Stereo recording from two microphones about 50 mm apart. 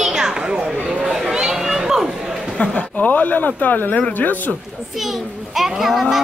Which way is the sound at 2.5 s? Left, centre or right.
Left.